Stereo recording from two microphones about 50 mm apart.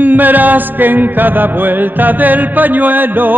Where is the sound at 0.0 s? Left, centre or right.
Right.